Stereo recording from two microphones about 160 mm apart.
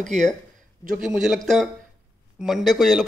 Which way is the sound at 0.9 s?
5° right (ahead or behind).